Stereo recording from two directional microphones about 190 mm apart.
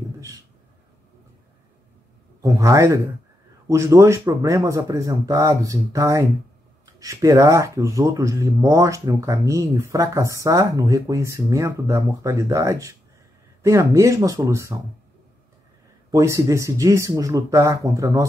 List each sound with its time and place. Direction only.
2.4 s speech: 15° right (ahead or behind)
16.1 s speech: 15° right (ahead or behind)